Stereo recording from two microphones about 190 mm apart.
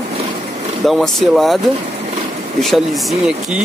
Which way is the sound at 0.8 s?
Centre (ahead or behind).